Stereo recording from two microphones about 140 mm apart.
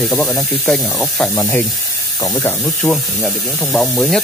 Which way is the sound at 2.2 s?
25° left (ahead or behind).